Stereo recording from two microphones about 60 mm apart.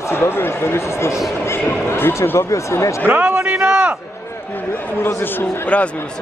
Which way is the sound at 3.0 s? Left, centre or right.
Right.